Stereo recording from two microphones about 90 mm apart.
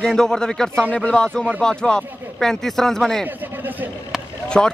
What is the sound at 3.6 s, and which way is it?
Speech, 20° right (ahead or behind).